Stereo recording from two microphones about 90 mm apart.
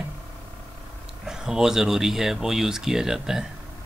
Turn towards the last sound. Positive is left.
turn(degrees=-5)  # may be behind; listen again after turning